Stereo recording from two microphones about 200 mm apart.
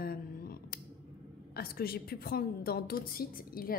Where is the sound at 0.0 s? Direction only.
50° left (ahead or behind).